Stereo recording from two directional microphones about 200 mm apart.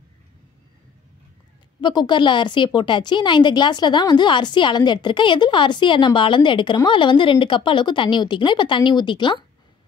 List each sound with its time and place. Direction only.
1.8 s a woman's voice: 20° left (ahead or behind)